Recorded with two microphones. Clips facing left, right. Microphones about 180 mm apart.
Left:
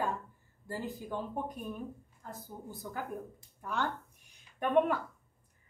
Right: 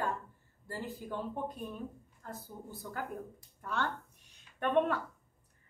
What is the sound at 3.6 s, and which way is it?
Speech, 15° left (ahead or behind).